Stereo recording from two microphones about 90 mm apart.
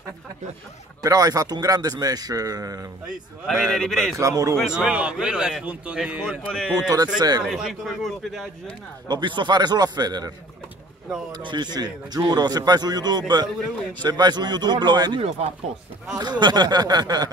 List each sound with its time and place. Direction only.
1.0 s a man's voice: 45° right (ahead or behind)
3.4 s a man's voice: centre (ahead or behind)
4.2 s a man's voice: 40° right (ahead or behind)
4.6 s a man's voice: 10° right (ahead or behind)
6.5 s a man's voice: centre (ahead or behind)
6.9 s a man's voice: 45° right (ahead or behind)
7.4 s a man's voice: 5° right (ahead or behind)
9.0 s a man's voice: 60° right (ahead or behind)
11.4 s a man's voice: 55° right (ahead or behind)